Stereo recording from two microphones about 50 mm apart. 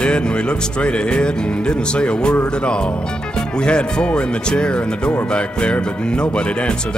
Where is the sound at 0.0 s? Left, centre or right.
Left.